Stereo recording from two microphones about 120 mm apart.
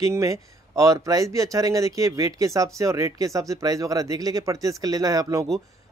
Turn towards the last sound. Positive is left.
turn(degrees=-30)  # may be behind; listen again after turning